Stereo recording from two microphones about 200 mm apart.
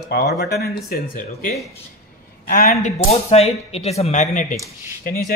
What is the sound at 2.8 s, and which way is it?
Speech, 30° left (ahead or behind).